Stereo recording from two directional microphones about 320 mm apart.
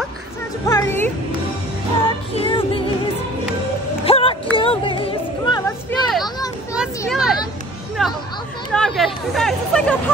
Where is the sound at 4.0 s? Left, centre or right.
Centre.